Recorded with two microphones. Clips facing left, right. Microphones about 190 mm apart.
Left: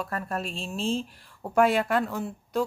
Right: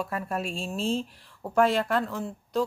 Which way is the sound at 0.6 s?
40° right (ahead or behind).